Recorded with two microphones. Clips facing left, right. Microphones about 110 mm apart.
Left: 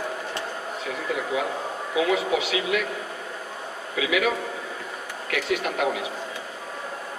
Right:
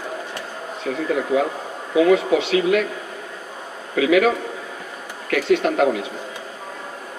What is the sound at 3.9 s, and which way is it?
Speech, 45° right (ahead or behind).